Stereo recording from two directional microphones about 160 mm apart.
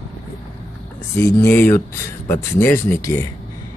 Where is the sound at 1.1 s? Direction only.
15° left (ahead or behind).